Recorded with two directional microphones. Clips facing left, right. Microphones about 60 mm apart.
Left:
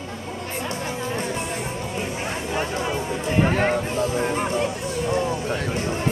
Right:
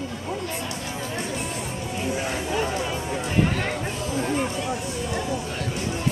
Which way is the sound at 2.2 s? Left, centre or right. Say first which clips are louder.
Left 1 dB; left.